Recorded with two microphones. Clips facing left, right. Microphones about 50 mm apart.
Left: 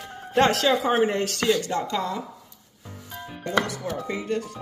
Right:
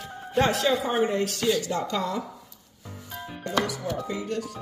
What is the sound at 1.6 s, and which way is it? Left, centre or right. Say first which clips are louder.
Speech: left 1 dB; left.